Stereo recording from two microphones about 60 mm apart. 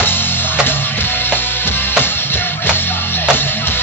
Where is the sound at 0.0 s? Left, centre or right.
Left.